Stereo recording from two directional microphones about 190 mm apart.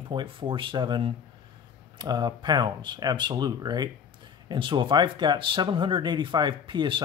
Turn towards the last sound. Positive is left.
turn(degrees=-25)  # may be behind; listen again after turning